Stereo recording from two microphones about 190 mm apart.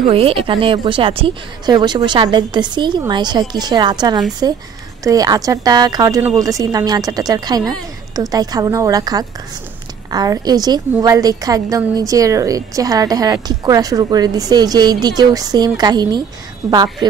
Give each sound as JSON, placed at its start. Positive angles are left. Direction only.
{"t": 0.0, "sound": "a woman's voice", "side_deg": -30}